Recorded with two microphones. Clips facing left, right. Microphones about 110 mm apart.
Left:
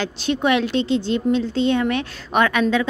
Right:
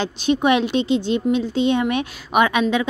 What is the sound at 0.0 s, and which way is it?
Speech, 15° right (ahead or behind).